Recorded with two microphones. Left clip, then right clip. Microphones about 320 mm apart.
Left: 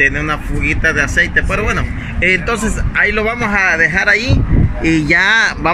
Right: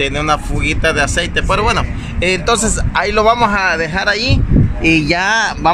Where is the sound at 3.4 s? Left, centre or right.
Centre.